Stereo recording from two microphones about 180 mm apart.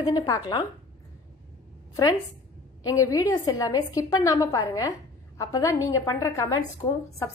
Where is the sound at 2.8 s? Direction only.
20° left (ahead or behind).